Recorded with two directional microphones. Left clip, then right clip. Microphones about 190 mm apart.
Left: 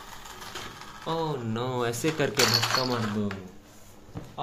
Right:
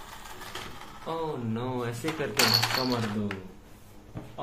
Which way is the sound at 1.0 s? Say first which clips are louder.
Left 3 dB; 45° left (ahead or behind).